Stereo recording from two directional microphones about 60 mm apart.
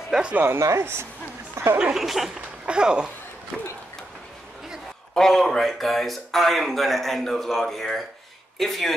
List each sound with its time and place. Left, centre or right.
0.1 s speech: centre
0.6 s speech: right
1.8 s speech: centre
2.6 s speech: centre
3.5 s a sound: centre
5.1 s speech: centre